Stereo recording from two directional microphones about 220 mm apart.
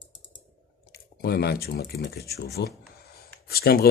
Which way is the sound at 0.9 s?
45° left (ahead or behind).